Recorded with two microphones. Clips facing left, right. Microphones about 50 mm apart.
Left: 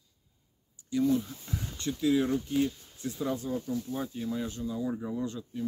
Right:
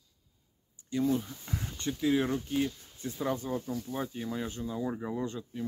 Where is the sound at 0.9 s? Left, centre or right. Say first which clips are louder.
Left 2 dB; right.